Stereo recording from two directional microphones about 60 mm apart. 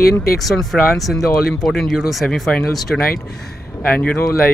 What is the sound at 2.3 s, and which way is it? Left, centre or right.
Speech, centre.